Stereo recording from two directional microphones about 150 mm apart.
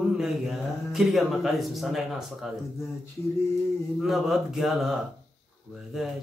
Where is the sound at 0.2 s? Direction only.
Centre (ahead or behind).